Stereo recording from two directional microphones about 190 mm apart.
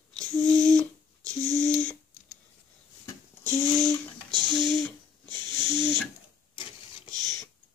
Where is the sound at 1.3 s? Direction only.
5° left (ahead or behind).